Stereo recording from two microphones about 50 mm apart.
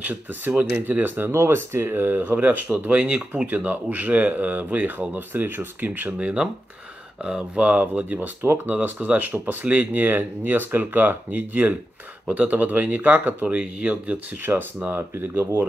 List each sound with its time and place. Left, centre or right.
0.0 s speech: right
1.3 s speech: right
5.9 s speech: right
7.7 s speech: right
15.0 s speech: right